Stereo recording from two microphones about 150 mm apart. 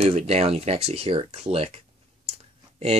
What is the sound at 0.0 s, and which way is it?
Speech, 45° right (ahead or behind).